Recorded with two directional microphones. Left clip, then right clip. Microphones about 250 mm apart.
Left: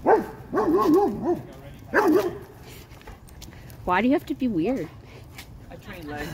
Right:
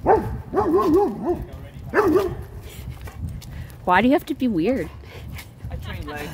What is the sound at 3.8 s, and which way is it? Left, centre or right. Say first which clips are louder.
Dog: right 5 dB; centre.